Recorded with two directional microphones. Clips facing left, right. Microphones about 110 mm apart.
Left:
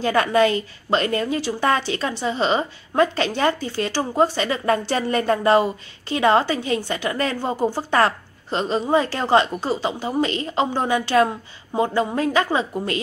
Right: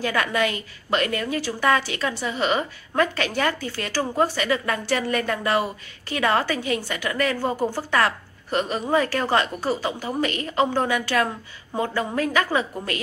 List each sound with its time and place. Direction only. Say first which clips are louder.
0.0 s speech: left 6 dB; 30° left (ahead or behind)